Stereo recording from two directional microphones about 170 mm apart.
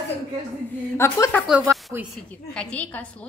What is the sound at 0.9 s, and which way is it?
Speech, 15° left (ahead or behind).